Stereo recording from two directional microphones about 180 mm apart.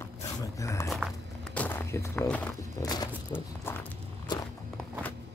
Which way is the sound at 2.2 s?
5° left (ahead or behind).